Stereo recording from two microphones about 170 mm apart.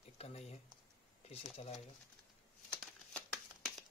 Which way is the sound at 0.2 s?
40° left (ahead or behind).